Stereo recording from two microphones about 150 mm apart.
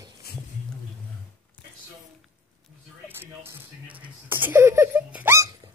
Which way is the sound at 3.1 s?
15° right (ahead or behind).